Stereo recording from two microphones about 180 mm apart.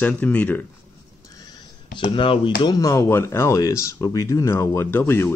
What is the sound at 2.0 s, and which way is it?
Speech, 25° left (ahead or behind).